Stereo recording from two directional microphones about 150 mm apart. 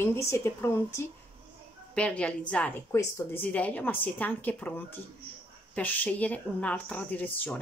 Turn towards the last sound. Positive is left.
turn(degrees=10)  # may be behind; listen again after turning